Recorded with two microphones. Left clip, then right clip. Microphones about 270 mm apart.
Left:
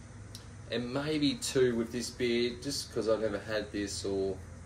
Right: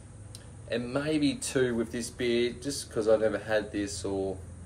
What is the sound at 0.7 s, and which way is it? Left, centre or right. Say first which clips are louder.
Speech: right 4 dB; centre.